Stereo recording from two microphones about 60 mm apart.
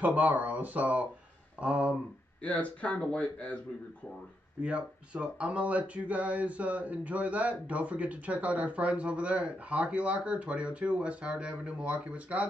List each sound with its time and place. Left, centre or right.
0.0 s speech: right
2.4 s speech: left
4.6 s speech: centre